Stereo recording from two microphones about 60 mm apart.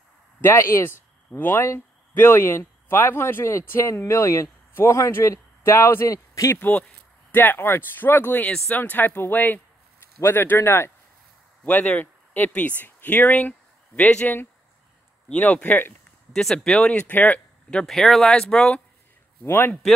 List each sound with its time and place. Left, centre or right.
0.4 s speech: left
6.0 s a man's voice: left
7.3 s speech: left
11.6 s speech: left
16.3 s speech: centre
17.1 s speech: left
17.8 s speech: centre
19.4 s speech: left